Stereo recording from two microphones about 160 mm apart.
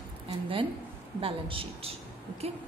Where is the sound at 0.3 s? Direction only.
35° right (ahead or behind).